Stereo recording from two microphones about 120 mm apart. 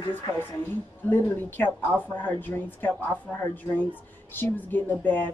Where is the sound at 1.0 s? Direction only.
20° left (ahead or behind).